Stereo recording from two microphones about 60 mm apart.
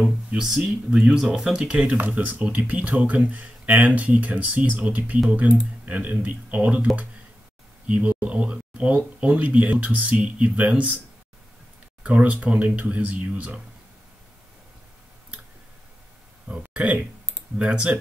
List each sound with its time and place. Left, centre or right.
0.0 s speech: centre
12.0 s speech: right
16.4 s speech: centre